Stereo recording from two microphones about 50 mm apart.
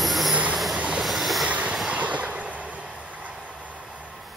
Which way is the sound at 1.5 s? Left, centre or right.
Right.